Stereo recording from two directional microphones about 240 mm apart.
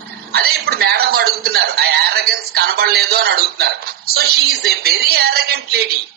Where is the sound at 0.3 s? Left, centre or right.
Right.